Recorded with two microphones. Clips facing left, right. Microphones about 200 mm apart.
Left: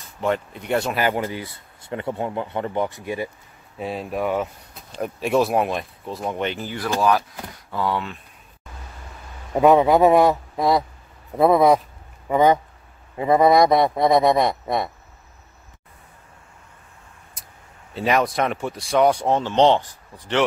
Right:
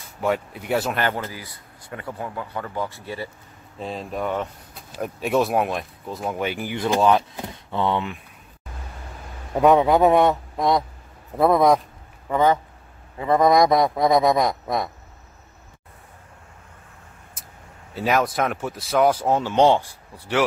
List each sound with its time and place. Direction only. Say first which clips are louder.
0.2 s speech: even; 5° right (ahead or behind)
0.9 s speech: left 3 dB; 15° left (ahead or behind)
3.7 s speech: left 3 dB; 5° left (ahead or behind); by 8.2 s 20° right (ahead or behind)
9.5 s speech: left 1 dB; centre (ahead or behind)
12.3 s speech: left 2 dB; 15° left (ahead or behind)
13.3 s speech: left 1 dB; 5° left (ahead or behind)
17.9 s speech: left 1 dB; centre (ahead or behind)